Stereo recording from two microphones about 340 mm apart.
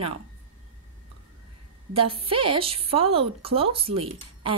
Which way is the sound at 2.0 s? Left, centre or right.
Centre.